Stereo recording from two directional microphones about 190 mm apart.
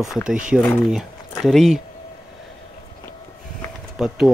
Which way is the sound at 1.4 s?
Centre (ahead or behind).